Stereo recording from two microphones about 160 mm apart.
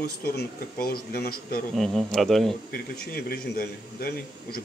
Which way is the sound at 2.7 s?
70° left (ahead or behind).